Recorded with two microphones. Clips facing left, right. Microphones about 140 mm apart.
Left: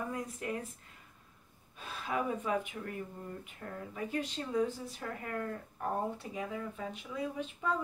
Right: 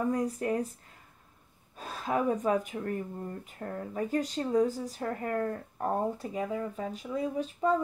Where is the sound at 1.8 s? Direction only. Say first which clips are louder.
Right 5 dB; 40° right (ahead or behind).